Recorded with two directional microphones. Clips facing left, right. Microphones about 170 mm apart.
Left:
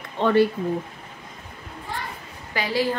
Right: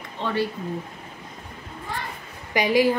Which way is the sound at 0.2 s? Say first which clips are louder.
Left 7 dB; 55° left (ahead or behind).